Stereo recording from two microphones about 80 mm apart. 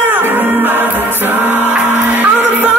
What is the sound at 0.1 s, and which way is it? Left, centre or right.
Music, right.